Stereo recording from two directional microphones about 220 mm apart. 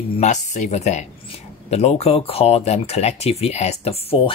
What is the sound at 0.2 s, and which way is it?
Speech, 30° left (ahead or behind).